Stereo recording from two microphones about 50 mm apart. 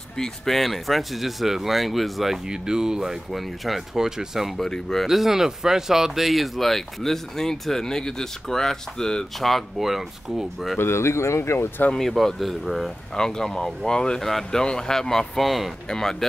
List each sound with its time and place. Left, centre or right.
0.2 s speech: centre
4.6 s speech: centre
5.0 s speech: centre
10.8 s speech: left
12.1 s speech: centre
13.1 s speech: centre